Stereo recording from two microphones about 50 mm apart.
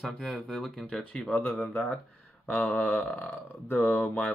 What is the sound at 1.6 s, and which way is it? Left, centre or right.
Speech, left.